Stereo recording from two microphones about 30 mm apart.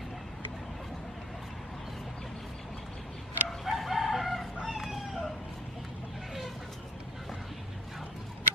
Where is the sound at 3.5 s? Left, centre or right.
Centre.